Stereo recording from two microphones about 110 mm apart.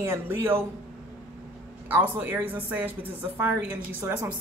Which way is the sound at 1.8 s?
15° right (ahead or behind).